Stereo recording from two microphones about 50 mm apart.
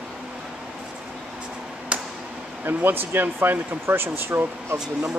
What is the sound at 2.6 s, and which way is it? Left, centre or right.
Speech, right.